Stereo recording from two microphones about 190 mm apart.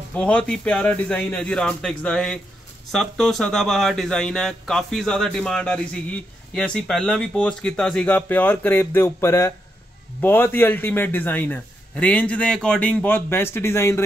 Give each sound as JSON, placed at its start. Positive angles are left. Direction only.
{"t": 0.1, "sound": "a man's voice", "side_deg": 5}